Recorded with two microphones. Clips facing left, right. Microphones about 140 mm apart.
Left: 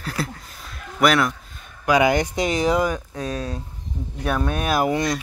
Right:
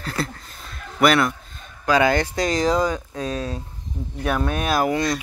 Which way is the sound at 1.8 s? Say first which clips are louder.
Left 1 dB; 15° left (ahead or behind).